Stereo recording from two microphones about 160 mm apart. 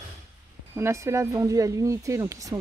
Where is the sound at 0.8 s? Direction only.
15° right (ahead or behind).